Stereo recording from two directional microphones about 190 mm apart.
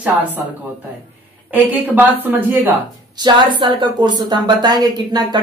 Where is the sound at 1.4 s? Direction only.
10° right (ahead or behind).